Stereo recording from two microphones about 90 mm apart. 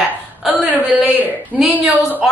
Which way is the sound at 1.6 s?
5° right (ahead or behind).